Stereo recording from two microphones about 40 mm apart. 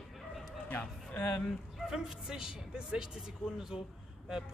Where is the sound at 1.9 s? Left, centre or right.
Centre.